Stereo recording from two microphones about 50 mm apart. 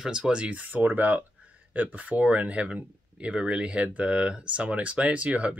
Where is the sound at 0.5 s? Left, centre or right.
Right.